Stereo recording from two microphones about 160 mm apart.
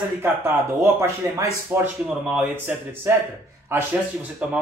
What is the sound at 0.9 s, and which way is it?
Speech, 15° right (ahead or behind).